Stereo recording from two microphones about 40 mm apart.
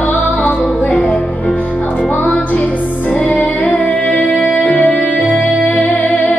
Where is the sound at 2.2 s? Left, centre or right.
Left.